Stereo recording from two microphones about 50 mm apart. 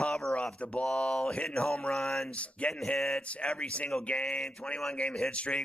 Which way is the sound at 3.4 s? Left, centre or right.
Left.